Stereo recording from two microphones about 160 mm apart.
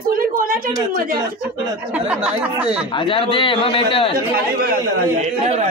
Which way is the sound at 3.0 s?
35° left (ahead or behind).